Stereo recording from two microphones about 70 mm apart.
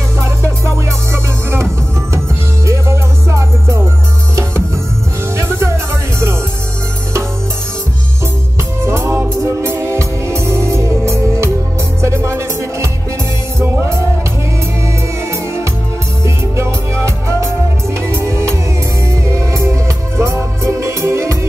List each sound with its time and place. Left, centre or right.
0.2 s music: right
8.8 s music: right
16.5 s music: right